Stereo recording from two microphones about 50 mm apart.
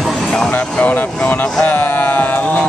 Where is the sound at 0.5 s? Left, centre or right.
Left.